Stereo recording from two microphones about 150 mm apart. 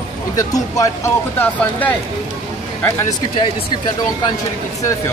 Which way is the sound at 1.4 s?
10° left (ahead or behind).